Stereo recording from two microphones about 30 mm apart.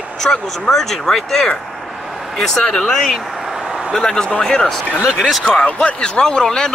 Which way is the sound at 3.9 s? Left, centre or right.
Centre.